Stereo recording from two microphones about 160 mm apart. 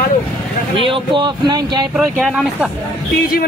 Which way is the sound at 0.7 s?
35° right (ahead or behind).